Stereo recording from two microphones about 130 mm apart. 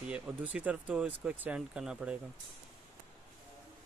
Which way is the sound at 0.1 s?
10° right (ahead or behind).